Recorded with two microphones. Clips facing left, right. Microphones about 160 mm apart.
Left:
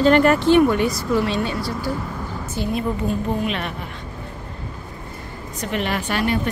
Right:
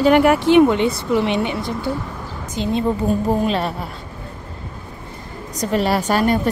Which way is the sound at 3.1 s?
35° right (ahead or behind).